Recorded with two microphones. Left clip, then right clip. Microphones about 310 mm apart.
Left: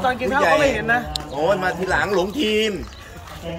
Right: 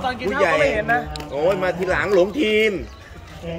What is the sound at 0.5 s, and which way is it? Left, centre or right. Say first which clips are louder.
Speech: even; left.